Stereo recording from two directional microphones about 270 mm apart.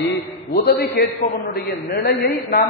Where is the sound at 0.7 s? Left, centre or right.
Left.